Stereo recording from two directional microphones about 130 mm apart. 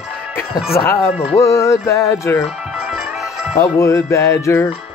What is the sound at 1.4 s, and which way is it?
Speech, 25° left (ahead or behind).